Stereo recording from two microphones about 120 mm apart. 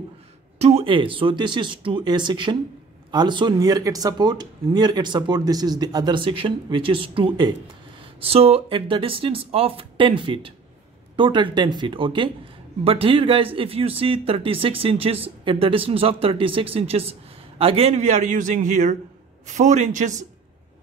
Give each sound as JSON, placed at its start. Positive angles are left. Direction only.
{"t": 0.6, "sound": "speech", "side_deg": -60}
{"t": 8.3, "sound": "a man's voice", "side_deg": -55}